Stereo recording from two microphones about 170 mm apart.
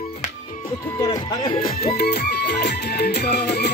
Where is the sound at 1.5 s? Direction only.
60° left (ahead or behind); by 3.6 s 75° left (ahead or behind).